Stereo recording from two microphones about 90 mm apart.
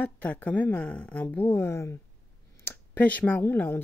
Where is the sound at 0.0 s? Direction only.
15° left (ahead or behind).